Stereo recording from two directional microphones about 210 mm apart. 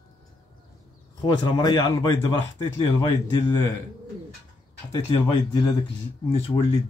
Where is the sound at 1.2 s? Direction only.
20° left (ahead or behind).